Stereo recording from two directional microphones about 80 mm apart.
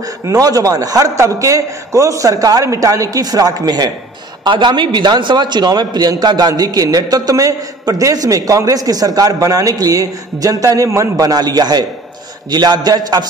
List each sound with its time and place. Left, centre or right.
0.3 s a man's voice: right
4.5 s a man's voice: right